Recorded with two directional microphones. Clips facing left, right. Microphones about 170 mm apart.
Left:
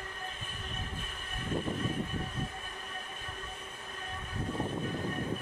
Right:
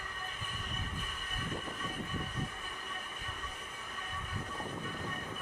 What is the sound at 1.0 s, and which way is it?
Train, 25° left (ahead or behind).